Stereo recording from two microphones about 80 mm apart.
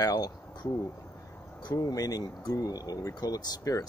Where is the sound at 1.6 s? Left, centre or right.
Left.